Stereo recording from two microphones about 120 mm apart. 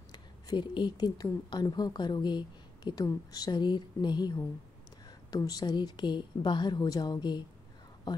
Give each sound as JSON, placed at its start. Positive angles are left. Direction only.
{"t": 0.1, "sound": "speech", "side_deg": 40}